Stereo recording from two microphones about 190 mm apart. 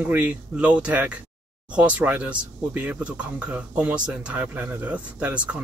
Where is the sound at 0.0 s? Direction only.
10° right (ahead or behind).